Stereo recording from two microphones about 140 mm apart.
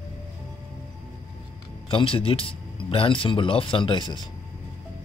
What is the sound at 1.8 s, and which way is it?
Speech, 40° left (ahead or behind).